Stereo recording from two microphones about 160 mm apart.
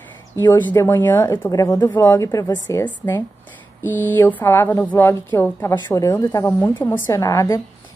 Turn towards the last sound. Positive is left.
turn(degrees=20)  # may be behind; listen again after turning